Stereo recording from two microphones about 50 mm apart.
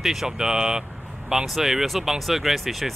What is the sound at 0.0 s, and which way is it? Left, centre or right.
Speech, centre.